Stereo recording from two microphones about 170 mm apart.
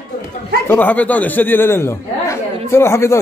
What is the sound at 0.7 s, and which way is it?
Speech, 10° left (ahead or behind).